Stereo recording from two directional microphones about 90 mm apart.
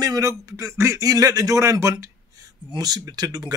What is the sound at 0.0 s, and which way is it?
Speech, 45° right (ahead or behind).